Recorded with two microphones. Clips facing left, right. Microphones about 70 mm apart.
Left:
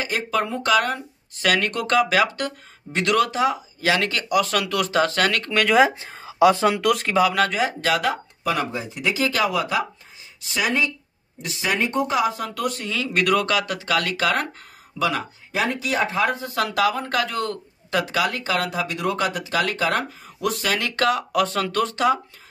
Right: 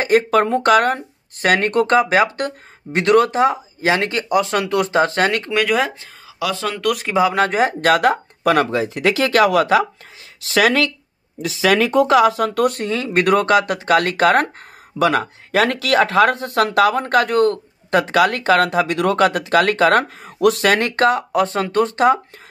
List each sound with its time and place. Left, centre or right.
0.0 s speech: right
5.7 s speech: centre
6.2 s a sound: left
6.7 s speech: centre
7.2 s speech: right
10.4 s speech: right
15.5 s speech: right
20.9 s speech: right